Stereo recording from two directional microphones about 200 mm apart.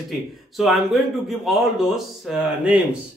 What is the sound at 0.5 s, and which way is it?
A man's voice, centre (ahead or behind).